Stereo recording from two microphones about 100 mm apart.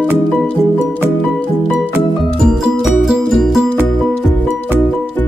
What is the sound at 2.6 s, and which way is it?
Music, 5° right (ahead or behind).